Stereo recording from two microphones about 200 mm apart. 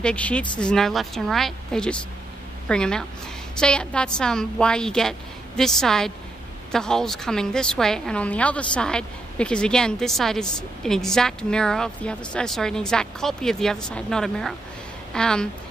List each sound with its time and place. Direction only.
0.0 s a woman's voice: 5° left (ahead or behind)